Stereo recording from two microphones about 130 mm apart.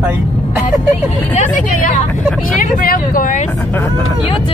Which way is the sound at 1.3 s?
80° left.